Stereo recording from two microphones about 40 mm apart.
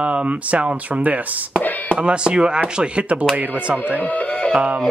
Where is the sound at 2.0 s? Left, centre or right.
Right.